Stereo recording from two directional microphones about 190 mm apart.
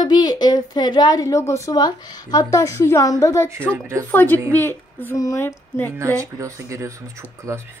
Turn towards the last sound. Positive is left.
turn(degrees=-15)  # may be behind; listen again after turning